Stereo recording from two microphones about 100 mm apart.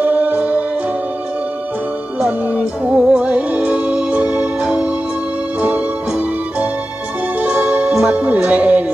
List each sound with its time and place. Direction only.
0.0 s music: 15° right (ahead or behind)
2.1 s music: 15° right (ahead or behind)